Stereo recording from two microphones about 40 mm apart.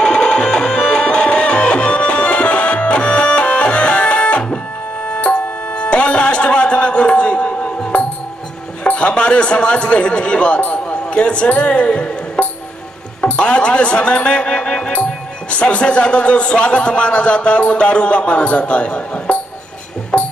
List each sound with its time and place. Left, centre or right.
0.0 s music: left
8.8 s a sound: left
11.1 s speech: left
20.1 s music: left